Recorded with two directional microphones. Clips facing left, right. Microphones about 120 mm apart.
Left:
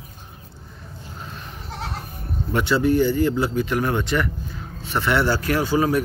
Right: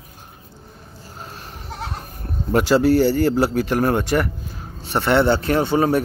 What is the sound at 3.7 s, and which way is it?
Speech, 45° right (ahead or behind).